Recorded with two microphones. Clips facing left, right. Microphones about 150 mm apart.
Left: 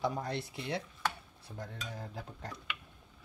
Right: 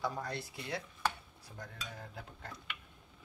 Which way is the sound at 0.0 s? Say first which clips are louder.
Left 4 dB; 25° left (ahead or behind).